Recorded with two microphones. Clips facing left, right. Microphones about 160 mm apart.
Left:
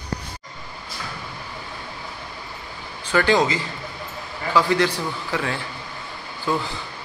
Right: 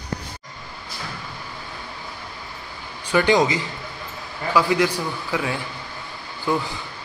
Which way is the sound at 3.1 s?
15° right (ahead or behind).